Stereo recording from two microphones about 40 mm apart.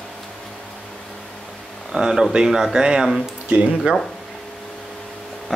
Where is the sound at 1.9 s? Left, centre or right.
Centre.